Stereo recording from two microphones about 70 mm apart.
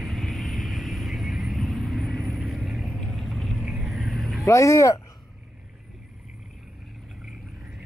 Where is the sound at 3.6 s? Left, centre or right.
Centre.